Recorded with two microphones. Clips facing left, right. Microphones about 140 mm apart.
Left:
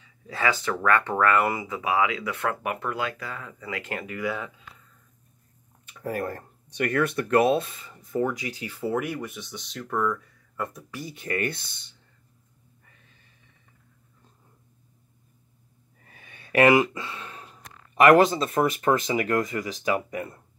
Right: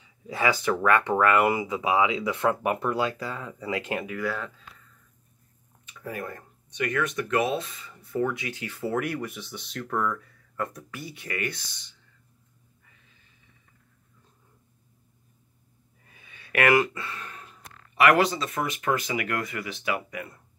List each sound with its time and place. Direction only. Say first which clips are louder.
0.0 s speech: right 1 dB; 15° right (ahead or behind)
4.0 s speech: even; centre (ahead or behind)
6.1 s speech: left 6 dB; 35° left (ahead or behind)
7.9 s speech: left 1 dB; 20° left (ahead or behind); by 10.9 s centre (ahead or behind)
11.1 s speech: left 4 dB; 45° left (ahead or behind)
16.1 s a sound: left 4 dB; 65° left (ahead or behind)
16.3 s a sound: left 6 dB; 40° left (ahead or behind)
16.8 s speech: left 2 dB; 20° left (ahead or behind)
17.9 s speech: left 4 dB; 45° left (ahead or behind)
18.4 s speech: left 6 dB; 30° left (ahead or behind)